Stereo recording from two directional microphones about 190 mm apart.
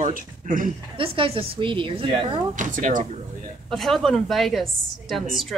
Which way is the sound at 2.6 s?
45° right (ahead or behind).